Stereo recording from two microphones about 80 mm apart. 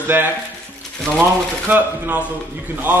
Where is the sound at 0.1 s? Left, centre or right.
Right.